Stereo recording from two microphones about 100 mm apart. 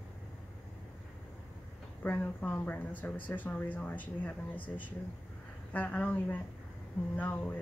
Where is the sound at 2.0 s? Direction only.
20° left (ahead or behind).